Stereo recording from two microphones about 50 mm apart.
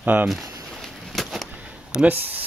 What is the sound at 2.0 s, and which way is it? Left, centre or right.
Speech, right.